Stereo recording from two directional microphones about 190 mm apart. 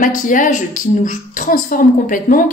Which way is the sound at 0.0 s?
45° left (ahead or behind).